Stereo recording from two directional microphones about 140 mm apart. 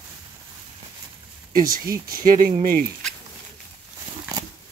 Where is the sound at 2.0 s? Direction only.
85° right.